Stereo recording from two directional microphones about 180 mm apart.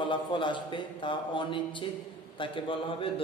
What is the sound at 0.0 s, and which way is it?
A man's voice, 25° left (ahead or behind).